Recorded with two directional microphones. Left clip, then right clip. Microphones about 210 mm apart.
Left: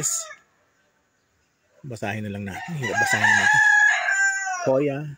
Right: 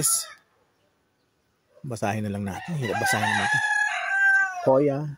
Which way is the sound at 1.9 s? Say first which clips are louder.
Right 2 dB; 10° right (ahead or behind).